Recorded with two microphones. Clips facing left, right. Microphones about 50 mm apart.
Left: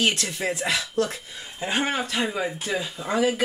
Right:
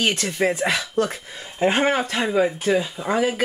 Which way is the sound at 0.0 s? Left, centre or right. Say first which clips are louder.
Right 3 dB; right.